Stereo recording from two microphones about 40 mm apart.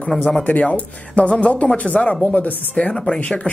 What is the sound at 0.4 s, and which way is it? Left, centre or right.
Speech, left.